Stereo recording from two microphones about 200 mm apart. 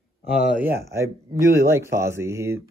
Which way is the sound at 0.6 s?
15° right (ahead or behind).